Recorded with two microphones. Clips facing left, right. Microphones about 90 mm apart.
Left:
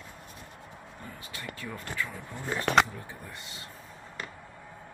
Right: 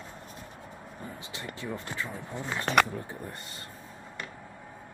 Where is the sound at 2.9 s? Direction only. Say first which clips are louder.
Right 5 dB; 40° right (ahead or behind).